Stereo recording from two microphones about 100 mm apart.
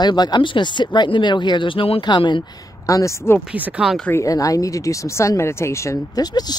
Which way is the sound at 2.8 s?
30° left (ahead or behind).